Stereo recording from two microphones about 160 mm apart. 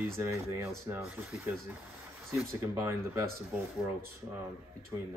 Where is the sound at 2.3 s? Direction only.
15° right (ahead or behind).